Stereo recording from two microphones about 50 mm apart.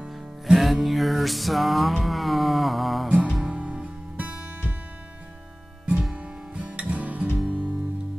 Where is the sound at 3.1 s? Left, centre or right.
Centre.